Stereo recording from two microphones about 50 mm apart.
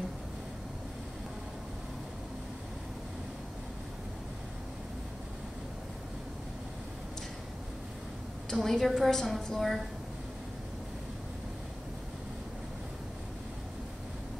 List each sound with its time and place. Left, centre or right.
8.5 s a woman's voice: centre